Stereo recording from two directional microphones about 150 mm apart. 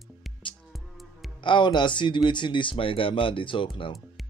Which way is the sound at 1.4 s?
30° left (ahead or behind).